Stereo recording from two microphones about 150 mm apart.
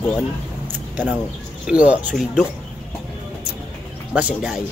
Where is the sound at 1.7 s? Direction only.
10° right (ahead or behind).